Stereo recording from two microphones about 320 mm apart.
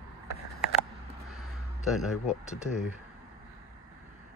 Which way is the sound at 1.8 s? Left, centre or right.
Centre.